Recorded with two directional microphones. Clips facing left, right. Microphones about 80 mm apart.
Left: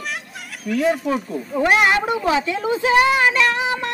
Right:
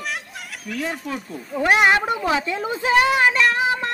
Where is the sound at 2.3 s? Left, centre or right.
Right.